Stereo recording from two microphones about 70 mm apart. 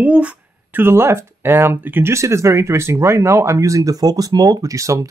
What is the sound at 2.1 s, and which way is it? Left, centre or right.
Speech, right.